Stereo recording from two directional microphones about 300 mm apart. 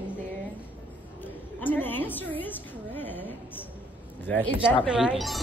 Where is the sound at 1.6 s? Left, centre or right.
Centre.